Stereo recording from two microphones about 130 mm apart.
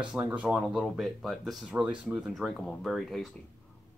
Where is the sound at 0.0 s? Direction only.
10° right (ahead or behind).